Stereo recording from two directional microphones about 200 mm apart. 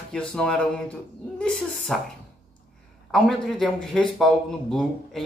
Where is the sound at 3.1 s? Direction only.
5° left (ahead or behind).